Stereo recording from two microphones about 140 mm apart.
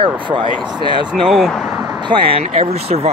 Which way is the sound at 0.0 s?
35° right (ahead or behind).